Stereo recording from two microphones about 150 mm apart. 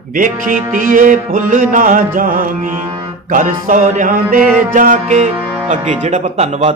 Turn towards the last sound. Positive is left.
turn(degrees=-45)  # may be behind; listen again after turning